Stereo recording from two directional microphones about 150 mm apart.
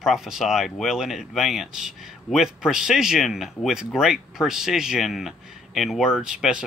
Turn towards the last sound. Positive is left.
turn(degrees=-5)  # may be behind; listen again after turning